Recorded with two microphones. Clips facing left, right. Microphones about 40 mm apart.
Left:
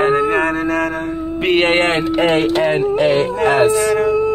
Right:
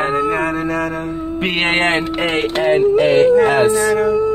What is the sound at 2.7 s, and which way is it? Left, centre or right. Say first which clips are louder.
Speech: right 2 dB; centre.